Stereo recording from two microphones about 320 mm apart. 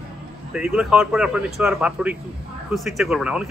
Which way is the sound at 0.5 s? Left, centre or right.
Centre.